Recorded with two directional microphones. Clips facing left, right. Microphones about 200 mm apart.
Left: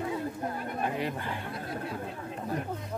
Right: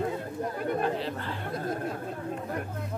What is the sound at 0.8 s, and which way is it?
Speech, 15° left (ahead or behind).